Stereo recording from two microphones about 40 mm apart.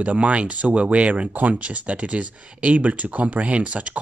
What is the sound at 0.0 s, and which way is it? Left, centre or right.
Speech, right.